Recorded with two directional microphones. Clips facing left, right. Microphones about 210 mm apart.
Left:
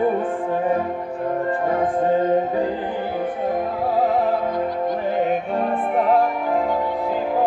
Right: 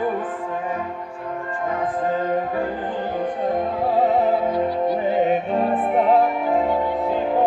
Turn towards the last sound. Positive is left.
turn(degrees=0)  # may be behind; listen again after turning